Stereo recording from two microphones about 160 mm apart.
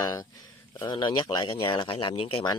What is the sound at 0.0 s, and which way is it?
Speech, 25° left (ahead or behind).